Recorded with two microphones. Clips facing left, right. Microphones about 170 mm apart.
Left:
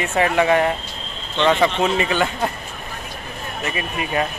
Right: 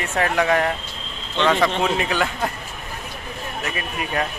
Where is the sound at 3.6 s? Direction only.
Centre (ahead or behind).